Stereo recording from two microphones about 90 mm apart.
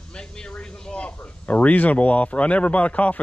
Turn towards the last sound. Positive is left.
turn(degrees=15)  # may be behind; listen again after turning